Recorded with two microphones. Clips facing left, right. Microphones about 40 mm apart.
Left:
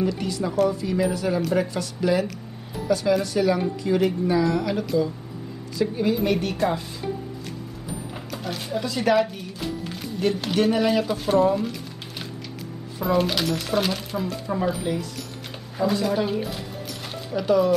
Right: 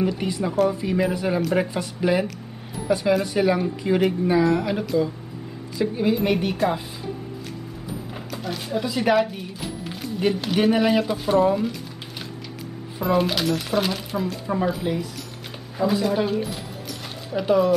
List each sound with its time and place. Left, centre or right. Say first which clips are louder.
0.0 s a woman's voice: right 1 dB; right
8.1 s a sound: right 2 dB; centre
8.8 s speech: even; centre
13.0 s speech: right 1 dB; centre
17.3 s speech: right 1 dB; centre